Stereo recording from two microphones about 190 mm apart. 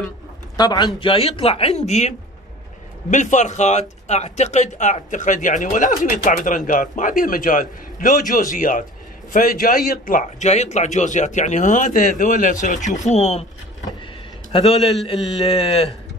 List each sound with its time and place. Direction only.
0.6 s a man's voice: 20° left (ahead or behind)
14.5 s a man's voice: 30° left (ahead or behind)